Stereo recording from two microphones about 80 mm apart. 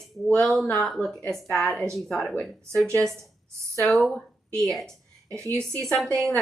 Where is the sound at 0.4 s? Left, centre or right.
Centre.